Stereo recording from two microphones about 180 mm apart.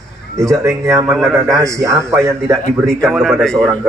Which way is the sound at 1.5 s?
20° right (ahead or behind).